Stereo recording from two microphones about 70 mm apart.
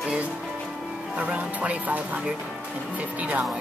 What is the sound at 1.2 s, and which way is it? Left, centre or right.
Speech, right.